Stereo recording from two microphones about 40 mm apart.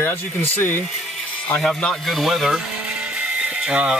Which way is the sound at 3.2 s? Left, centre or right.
Right.